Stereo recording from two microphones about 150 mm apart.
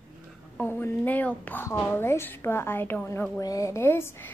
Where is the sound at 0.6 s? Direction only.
15° left (ahead or behind).